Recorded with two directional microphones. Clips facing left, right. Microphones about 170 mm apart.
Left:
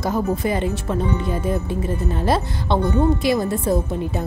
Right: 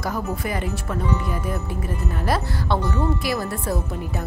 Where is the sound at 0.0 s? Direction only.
25° left (ahead or behind).